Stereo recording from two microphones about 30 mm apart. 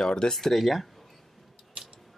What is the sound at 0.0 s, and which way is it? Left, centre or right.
Speech, left.